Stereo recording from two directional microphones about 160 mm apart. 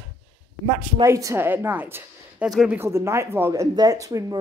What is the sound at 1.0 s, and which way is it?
Speech, 20° right (ahead or behind).